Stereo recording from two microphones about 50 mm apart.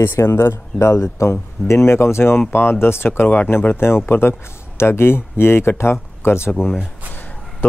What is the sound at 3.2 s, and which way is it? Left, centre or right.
Speech, left.